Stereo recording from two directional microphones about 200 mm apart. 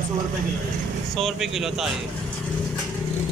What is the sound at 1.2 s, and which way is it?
Speech, centre (ahead or behind).